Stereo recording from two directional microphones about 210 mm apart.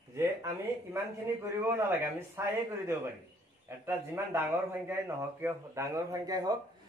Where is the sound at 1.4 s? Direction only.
10° right (ahead or behind).